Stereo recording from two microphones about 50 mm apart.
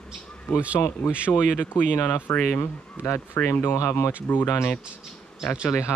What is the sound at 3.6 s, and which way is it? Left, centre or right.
Speech, left.